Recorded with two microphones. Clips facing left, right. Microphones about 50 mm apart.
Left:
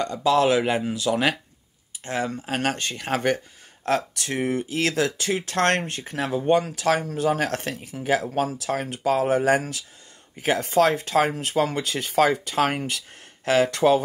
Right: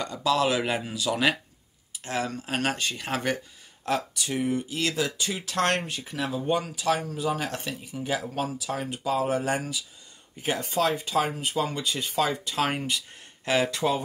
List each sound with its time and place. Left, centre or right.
0.3 s a man's voice: left
2.6 s speech: left
3.8 s speech: left
5.4 s speech: left